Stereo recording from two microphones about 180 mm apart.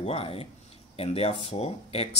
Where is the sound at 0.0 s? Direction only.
35° left (ahead or behind).